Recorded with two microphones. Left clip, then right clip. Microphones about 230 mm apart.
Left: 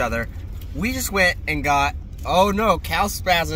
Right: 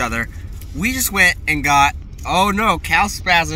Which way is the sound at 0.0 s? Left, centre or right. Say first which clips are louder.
Right 2 dB; centre.